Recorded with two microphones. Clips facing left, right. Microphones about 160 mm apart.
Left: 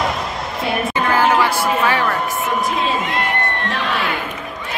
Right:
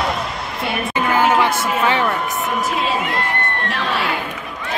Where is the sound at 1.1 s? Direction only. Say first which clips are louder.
Even; 20° right (ahead or behind).